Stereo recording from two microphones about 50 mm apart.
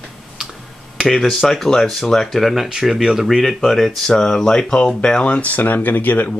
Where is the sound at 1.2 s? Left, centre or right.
Centre.